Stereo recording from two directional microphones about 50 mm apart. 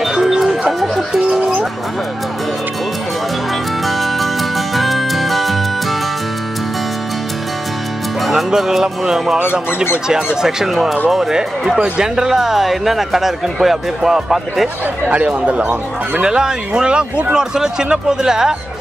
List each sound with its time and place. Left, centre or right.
0.0 s music: centre
3.8 s music: centre
8.3 s speech: centre
15.0 s speech: right
16.2 s speech: centre